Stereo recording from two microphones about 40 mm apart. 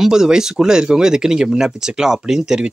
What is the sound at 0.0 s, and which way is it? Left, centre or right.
Speech, centre.